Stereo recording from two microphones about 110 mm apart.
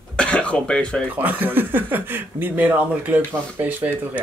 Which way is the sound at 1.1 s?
15° right (ahead or behind).